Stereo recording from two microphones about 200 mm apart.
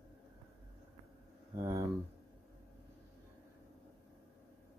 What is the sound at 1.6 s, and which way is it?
Speech, 15° right (ahead or behind).